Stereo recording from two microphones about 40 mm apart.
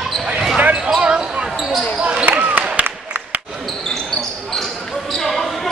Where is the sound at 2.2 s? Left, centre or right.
Right.